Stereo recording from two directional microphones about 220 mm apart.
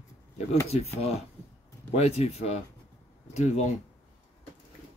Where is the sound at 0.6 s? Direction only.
30° left (ahead or behind).